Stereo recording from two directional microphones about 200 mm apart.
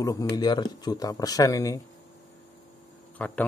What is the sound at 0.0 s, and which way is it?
Speech, 15° left (ahead or behind).